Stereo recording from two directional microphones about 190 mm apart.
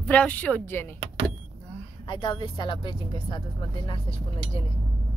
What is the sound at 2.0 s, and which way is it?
A woman's voice, 25° left (ahead or behind).